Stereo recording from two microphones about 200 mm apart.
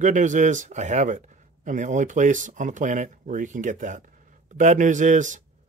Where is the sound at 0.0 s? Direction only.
40° right (ahead or behind).